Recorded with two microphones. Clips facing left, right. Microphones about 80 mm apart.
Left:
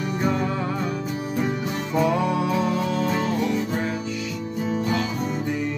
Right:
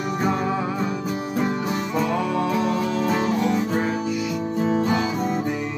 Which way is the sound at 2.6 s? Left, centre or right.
Centre.